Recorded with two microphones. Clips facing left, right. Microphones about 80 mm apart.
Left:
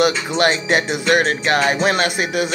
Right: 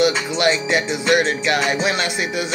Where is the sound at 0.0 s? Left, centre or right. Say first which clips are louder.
Left 1 dB; left.